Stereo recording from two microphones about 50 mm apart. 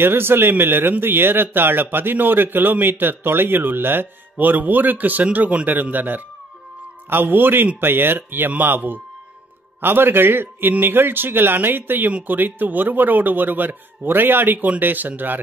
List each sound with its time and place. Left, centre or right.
0.0 s a man's voice: right